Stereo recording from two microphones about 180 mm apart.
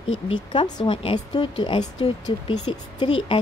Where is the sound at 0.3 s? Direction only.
25° left (ahead or behind).